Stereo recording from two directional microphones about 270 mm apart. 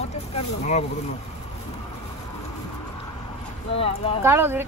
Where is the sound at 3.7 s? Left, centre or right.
Left.